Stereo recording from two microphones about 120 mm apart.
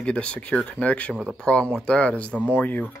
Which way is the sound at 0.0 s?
10° left (ahead or behind).